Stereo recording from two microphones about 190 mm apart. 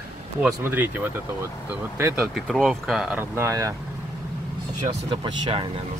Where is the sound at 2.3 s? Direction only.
Centre (ahead or behind).